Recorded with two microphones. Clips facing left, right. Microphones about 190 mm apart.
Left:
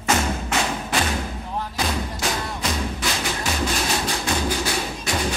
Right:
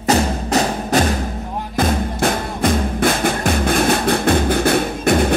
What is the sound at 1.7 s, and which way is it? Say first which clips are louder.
Music: right 11 dB; 50° right (ahead or behind).